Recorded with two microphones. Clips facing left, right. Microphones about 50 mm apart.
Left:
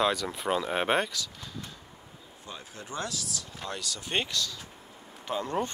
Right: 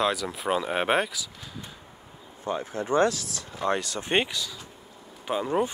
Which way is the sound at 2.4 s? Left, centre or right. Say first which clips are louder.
Right 14 dB; right.